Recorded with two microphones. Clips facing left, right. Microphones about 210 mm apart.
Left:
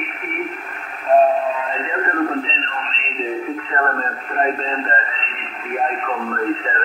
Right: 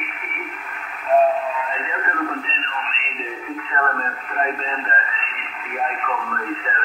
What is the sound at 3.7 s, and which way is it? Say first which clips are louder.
Radio: left 2 dB; 35° left (ahead or behind).